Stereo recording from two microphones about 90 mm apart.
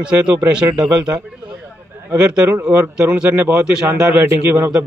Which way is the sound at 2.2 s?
10° right (ahead or behind).